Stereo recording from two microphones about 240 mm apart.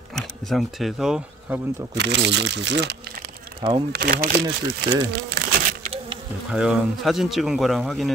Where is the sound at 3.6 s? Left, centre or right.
Centre.